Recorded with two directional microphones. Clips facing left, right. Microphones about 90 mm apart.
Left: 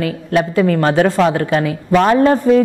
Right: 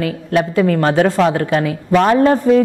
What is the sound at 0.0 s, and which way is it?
A woman's voice, 15° left (ahead or behind).